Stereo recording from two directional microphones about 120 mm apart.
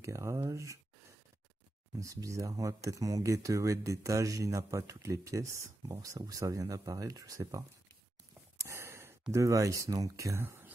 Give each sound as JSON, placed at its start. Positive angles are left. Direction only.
{"t": 0.0, "sound": "speech", "side_deg": -25}
{"t": 2.0, "sound": "speech", "side_deg": -25}
{"t": 8.5, "sound": "sigh", "side_deg": -25}
{"t": 9.3, "sound": "speech", "side_deg": -25}